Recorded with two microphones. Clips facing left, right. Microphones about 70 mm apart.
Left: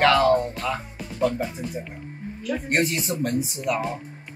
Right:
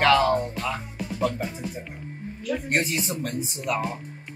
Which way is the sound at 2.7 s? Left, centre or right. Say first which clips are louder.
Left 4 dB; centre.